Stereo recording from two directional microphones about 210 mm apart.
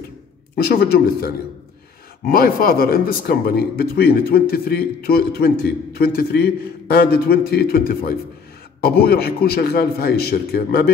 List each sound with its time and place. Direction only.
0.6 s speech: 50° left (ahead or behind)